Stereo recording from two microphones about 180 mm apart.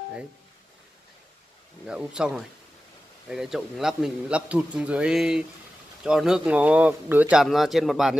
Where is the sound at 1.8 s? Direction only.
5° right (ahead or behind).